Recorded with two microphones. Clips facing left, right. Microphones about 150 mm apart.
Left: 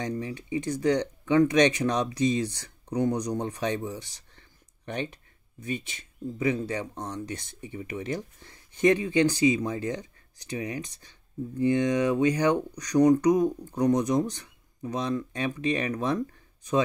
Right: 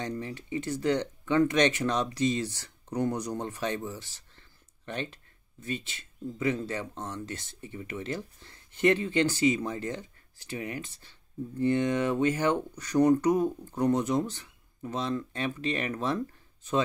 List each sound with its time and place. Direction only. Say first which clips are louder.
0.0 s speech: left 3 dB; 15° left (ahead or behind)